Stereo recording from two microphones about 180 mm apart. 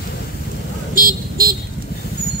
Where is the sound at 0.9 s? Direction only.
50° right (ahead or behind).